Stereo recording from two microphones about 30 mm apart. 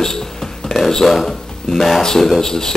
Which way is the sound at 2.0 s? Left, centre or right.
Centre.